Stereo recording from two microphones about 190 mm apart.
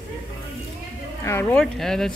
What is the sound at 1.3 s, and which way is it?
Speech, 10° left (ahead or behind).